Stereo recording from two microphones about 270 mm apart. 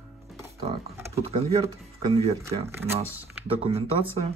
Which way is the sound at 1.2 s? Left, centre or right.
Right.